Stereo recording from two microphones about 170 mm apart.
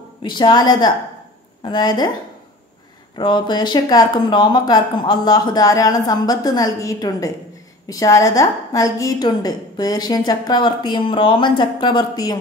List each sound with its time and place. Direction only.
0.2 s a woman's voice: 25° left (ahead or behind)
3.2 s a woman's voice: 25° left (ahead or behind)